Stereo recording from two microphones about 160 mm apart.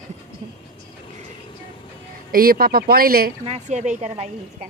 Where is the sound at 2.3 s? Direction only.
65° right (ahead or behind).